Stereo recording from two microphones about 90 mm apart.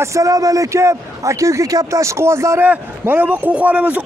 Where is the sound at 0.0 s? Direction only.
35° right (ahead or behind).